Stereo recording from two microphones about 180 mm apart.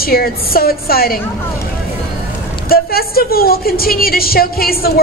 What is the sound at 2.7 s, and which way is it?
A woman's voice, 55° left (ahead or behind).